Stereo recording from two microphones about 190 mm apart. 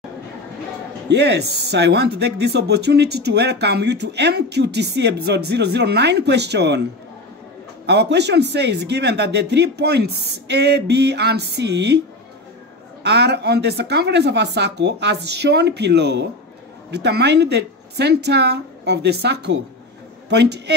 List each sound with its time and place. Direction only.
1.0 s speech: 60° right (ahead or behind)
7.8 s speech: 65° right (ahead or behind)
13.0 s speech: 60° right (ahead or behind)